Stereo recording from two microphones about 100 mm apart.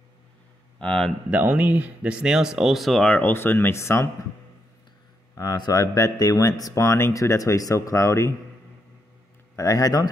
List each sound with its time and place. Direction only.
0.7 s speech: 10° left (ahead or behind)
1.3 s speech: 15° right (ahead or behind); by 3.1 s centre (ahead or behind)
3.1 s speech: 20° left (ahead or behind)
5.3 s speech: 35° left (ahead or behind)
9.6 s speech: 35° left (ahead or behind)